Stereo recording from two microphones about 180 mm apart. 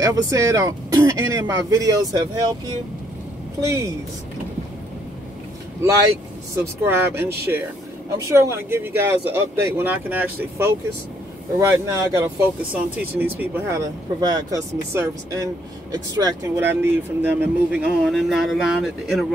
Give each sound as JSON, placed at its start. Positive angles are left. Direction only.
{"t": 0.0, "sound": "speech", "side_deg": -20}
{"t": 3.6, "sound": "speech", "side_deg": -15}
{"t": 6.5, "sound": "speech", "side_deg": -15}